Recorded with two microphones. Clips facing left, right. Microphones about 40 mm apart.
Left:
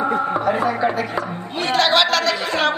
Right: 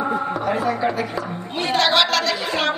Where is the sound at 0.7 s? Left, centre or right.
Centre.